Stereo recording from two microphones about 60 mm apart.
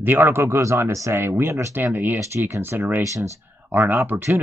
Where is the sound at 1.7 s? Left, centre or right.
Right.